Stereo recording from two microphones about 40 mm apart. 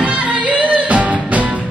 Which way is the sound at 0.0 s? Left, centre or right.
Right.